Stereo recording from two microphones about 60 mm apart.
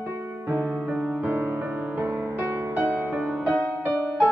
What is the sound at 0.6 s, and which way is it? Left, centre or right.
Music, right.